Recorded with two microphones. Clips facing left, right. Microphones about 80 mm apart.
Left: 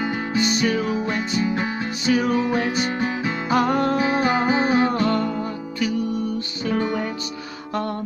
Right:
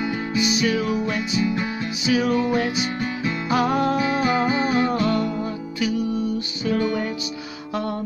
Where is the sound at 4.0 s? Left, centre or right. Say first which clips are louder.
Left 1 dB; left.